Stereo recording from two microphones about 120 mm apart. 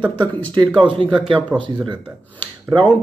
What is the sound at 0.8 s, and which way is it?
Speech, 45° right (ahead or behind).